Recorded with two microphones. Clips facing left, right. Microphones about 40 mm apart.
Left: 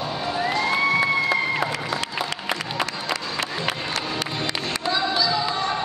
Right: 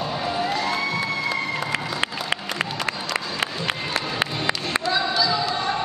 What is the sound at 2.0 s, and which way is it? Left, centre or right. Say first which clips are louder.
Music: right 2 dB; right.